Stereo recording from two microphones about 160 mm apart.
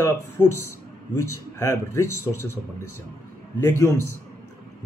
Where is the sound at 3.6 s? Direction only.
15° left (ahead or behind).